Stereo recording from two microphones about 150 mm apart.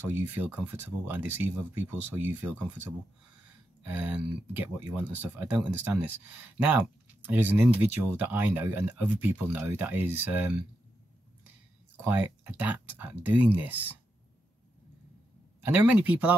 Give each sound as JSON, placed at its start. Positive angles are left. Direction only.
{"t": 0.1, "sound": "speech", "side_deg": -15}
{"t": 7.2, "sound": "speech", "side_deg": -10}
{"t": 12.0, "sound": "speech", "side_deg": -10}
{"t": 15.6, "sound": "speech", "side_deg": -10}